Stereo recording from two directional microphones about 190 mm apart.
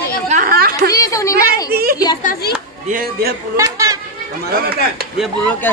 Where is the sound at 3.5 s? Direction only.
15° right (ahead or behind).